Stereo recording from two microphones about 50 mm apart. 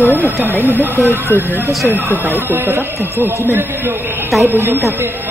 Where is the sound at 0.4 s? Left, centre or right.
Right.